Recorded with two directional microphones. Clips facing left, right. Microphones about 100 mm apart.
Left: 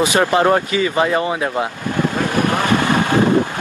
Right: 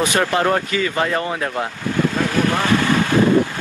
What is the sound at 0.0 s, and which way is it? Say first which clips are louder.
Speech: left 3 dB; 20° left (ahead or behind).